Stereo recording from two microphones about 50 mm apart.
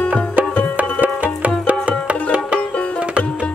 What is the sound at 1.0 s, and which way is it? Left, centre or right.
Music, right.